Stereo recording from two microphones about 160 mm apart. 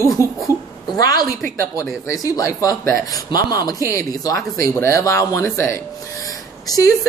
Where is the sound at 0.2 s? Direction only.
20° right (ahead or behind).